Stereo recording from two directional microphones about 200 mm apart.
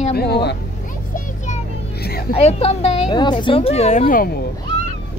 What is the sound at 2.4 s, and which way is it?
A woman's voice, 30° left (ahead or behind).